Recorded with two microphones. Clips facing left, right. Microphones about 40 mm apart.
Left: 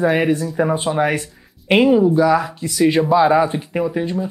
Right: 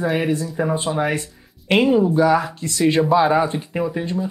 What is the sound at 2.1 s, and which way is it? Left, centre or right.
Speech, centre.